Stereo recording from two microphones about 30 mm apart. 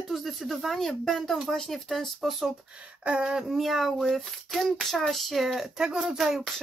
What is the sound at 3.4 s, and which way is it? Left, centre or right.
Speech, centre.